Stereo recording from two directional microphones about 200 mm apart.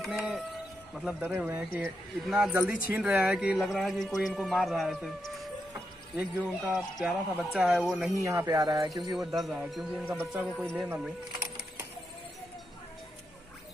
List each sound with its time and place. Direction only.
0.0 s a man's voice: centre (ahead or behind)
8.2 s speech: 15° right (ahead or behind)
9.1 s a man's voice: centre (ahead or behind)